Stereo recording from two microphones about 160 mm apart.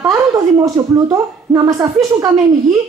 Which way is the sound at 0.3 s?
20° right (ahead or behind).